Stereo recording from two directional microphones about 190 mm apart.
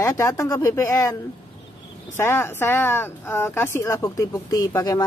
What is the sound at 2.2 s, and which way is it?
Speech, 10° left (ahead or behind).